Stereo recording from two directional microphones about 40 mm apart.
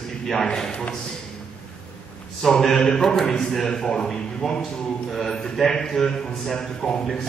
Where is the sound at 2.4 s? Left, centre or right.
Centre.